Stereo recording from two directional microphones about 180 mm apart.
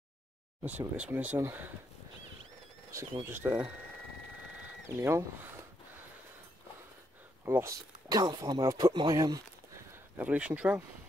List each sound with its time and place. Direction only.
0.7 s speech: 10° right (ahead or behind)
3.3 s speech: 10° right (ahead or behind)
4.8 s speech: 15° right (ahead or behind)
7.4 s speech: 15° right (ahead or behind)
10.1 s speech: 5° right (ahead or behind)